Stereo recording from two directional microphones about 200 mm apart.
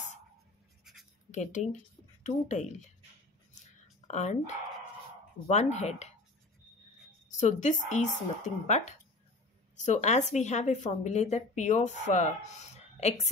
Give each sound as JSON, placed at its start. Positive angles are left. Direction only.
{"t": 1.3, "sound": "a woman's voice", "side_deg": 35}
{"t": 3.8, "sound": "a sound", "side_deg": 35}
{"t": 5.5, "sound": "a woman's voice", "side_deg": 35}
{"t": 7.2, "sound": "a woman's voice", "side_deg": 35}